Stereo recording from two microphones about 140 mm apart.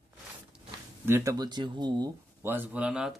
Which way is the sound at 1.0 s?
15° right (ahead or behind).